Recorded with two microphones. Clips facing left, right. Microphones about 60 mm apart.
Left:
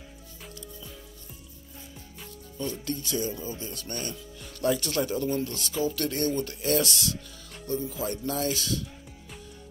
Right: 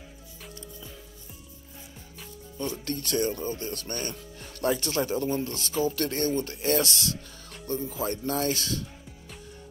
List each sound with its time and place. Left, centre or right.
2.1 s music: centre
2.8 s speech: right